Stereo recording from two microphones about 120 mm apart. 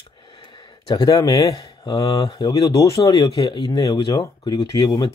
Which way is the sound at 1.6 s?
35° left (ahead or behind).